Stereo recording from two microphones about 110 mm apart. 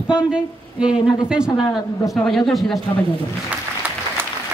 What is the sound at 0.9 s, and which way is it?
Speech, 45° left (ahead or behind).